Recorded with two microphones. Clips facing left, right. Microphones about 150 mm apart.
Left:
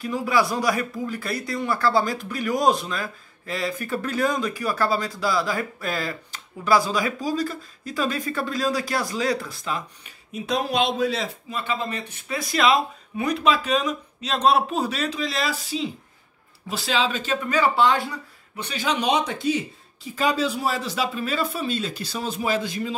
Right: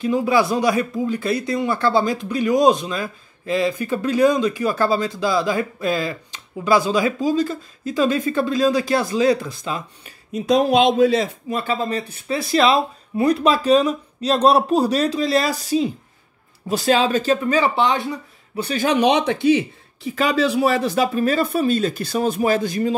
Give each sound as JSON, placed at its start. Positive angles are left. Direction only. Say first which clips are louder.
{"t": 0.0, "sound": "speech", "louder": "right 5 dB", "side_deg": -25}
{"t": 11.5, "sound": "speech", "louder": "right 6 dB", "side_deg": -40}
{"t": 17.5, "sound": "speech", "louder": "left 3 dB", "side_deg": -25}
{"t": 18.6, "sound": "speech", "louder": "right 8 dB", "side_deg": -45}